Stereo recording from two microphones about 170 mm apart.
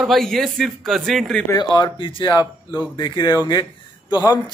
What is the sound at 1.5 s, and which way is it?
Speech, 25° left (ahead or behind).